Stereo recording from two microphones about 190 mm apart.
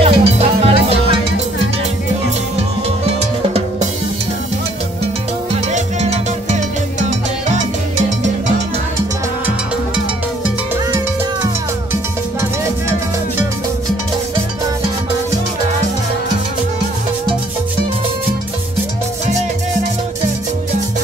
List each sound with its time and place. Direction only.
0.0 s music: 30° right (ahead or behind)
5.7 s music: 40° right (ahead or behind)
11.4 s music: 15° right (ahead or behind)